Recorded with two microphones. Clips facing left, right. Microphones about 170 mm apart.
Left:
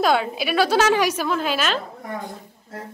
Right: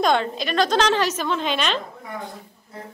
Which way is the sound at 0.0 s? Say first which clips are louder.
Left 1 dB; 5° left (ahead or behind).